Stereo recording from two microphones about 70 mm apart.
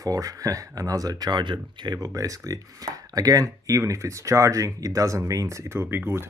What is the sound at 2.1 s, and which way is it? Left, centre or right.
Speech, right.